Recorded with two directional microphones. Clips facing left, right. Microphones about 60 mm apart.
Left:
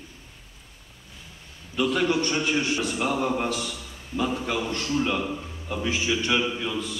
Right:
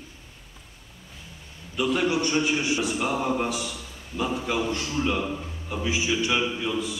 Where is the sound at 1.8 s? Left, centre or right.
Centre.